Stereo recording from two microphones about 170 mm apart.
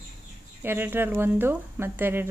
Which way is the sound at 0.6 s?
10° right (ahead or behind).